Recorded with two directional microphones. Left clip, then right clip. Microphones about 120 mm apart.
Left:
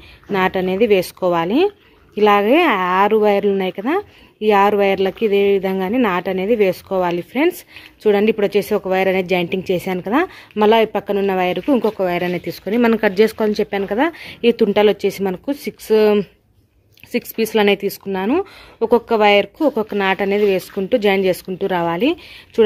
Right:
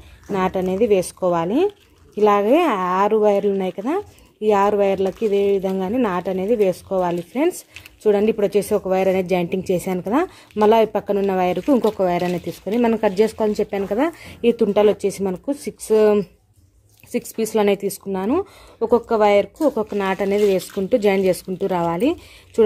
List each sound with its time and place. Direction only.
0.3 s a woman's voice: 25° left (ahead or behind); by 12.3 s 5° left (ahead or behind)
12.3 s a woman's voice: 15° left (ahead or behind)